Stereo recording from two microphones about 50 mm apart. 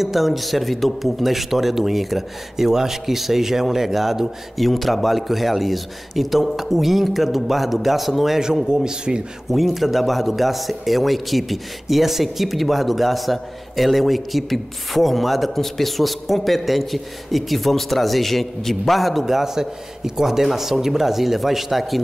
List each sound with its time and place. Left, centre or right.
0.0 s speech: centre
9.5 s speech: centre